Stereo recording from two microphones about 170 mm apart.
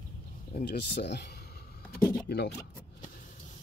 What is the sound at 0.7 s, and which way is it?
Speech, 80° left.